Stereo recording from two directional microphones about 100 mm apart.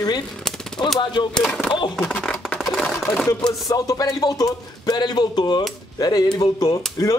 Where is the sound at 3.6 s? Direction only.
35° left (ahead or behind).